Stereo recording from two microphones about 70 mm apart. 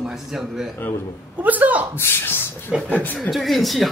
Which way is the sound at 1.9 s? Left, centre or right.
Left.